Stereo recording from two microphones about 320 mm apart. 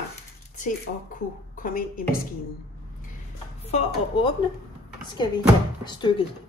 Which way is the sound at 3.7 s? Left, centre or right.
Centre.